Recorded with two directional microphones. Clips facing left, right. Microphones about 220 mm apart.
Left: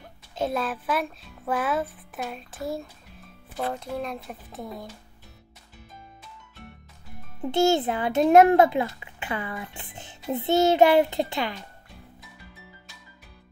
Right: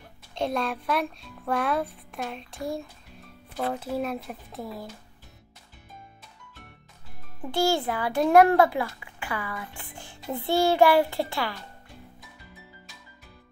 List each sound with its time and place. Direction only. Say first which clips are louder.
0.3 s a child's voice: even; 5° left (ahead or behind)
7.4 s a child's voice: left 3 dB; 20° left (ahead or behind)